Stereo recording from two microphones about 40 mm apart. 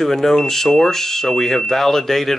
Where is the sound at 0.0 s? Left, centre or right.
Centre.